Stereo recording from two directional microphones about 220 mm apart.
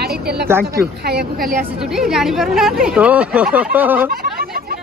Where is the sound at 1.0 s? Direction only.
45° right (ahead or behind).